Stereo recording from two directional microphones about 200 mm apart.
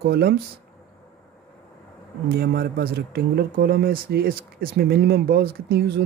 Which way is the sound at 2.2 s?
50° right (ahead or behind).